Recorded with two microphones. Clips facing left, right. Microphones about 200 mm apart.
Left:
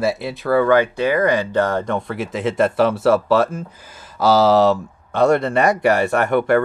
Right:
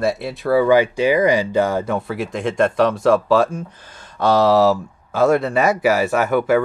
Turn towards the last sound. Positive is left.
turn(degrees=-5)  # may be behind; listen again after turning